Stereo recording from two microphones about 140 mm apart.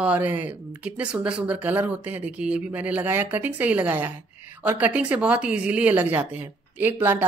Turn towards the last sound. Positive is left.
turn(degrees=-15)  # may be behind; listen again after turning